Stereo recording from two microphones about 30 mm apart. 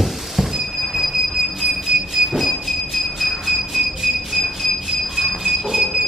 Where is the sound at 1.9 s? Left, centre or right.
Centre.